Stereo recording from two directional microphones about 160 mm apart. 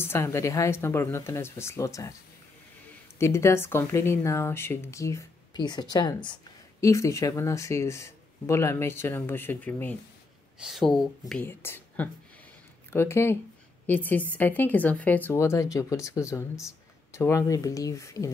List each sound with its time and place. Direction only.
0.0 s speech: 15° left (ahead or behind)
3.2 s speech: 15° left (ahead or behind)
10.6 s speech: centre (ahead or behind)
11.4 s speech: 15° left (ahead or behind)